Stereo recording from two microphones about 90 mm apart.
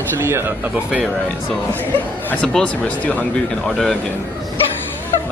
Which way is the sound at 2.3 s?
15° left (ahead or behind).